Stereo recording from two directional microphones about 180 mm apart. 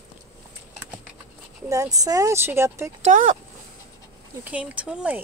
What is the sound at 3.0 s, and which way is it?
Speech, 45° right (ahead or behind).